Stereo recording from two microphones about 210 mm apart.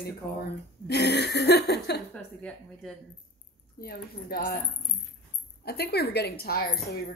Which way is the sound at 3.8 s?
45° left (ahead or behind).